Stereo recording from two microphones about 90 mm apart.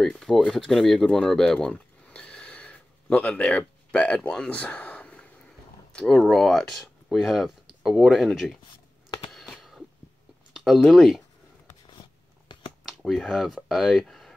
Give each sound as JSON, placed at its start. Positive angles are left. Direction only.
{"t": 0.0, "sound": "speech", "side_deg": 5}
{"t": 9.3, "sound": "a sound", "side_deg": 0}
{"t": 10.5, "sound": "speech", "side_deg": 0}
{"t": 11.9, "sound": "biting", "side_deg": 55}
{"t": 12.8, "sound": "speech", "side_deg": 0}